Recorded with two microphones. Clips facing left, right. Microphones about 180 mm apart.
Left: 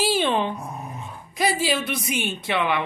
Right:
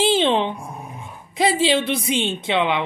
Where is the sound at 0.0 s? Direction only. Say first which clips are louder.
Right 4 dB; 20° right (ahead or behind).